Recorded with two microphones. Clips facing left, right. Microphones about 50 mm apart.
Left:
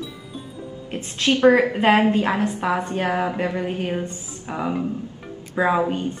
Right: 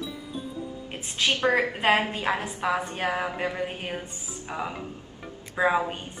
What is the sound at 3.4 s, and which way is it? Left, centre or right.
Speech, centre.